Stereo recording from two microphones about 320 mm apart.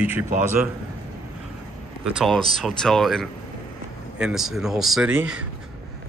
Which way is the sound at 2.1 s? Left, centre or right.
Centre.